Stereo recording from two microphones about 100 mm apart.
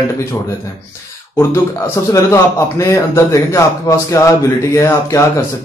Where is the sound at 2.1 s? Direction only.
30° left (ahead or behind).